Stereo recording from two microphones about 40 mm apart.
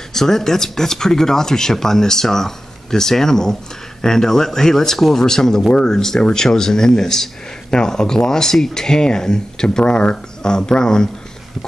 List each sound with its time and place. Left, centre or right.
0.1 s speech: centre